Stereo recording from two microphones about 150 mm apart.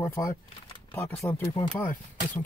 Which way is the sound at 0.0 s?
20° left (ahead or behind).